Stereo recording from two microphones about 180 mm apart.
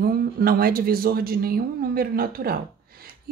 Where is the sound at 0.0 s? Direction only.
55° right (ahead or behind).